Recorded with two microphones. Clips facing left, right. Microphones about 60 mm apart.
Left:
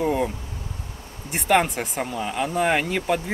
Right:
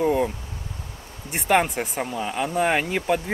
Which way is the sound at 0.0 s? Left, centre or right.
Centre.